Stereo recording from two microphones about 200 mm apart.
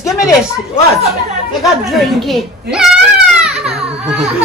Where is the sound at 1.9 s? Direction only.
Centre (ahead or behind).